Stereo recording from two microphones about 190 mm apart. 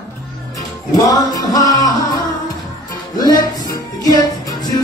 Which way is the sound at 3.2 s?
20° left (ahead or behind).